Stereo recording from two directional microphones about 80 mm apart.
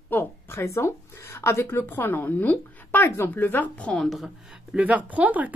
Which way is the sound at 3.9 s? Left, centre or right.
Centre.